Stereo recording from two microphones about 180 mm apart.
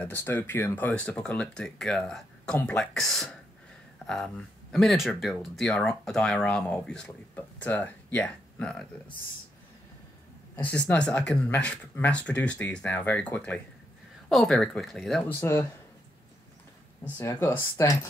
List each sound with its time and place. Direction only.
0.0 s speech: 10° left (ahead or behind)
10.5 s speech: 10° left (ahead or behind)
17.2 s speech: 15° left (ahead or behind)